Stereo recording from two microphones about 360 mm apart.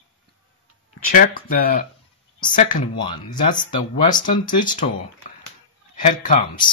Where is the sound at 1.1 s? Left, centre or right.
Left.